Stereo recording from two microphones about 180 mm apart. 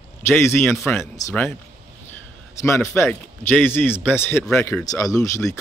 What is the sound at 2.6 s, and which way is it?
A man's voice, 15° left (ahead or behind).